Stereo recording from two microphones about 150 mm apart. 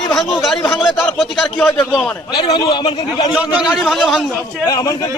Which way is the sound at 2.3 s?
30° left (ahead or behind).